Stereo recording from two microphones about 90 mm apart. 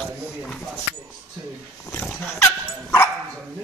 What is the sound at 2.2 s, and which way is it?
Dog, 25° left (ahead or behind).